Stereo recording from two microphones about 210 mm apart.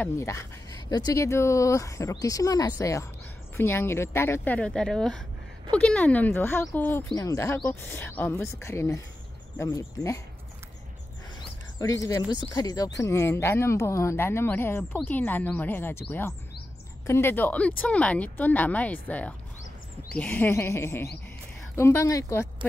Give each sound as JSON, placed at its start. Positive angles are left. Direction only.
{"t": 0.0, "sound": "speech", "side_deg": 15}
{"t": 11.8, "sound": "speech", "side_deg": 15}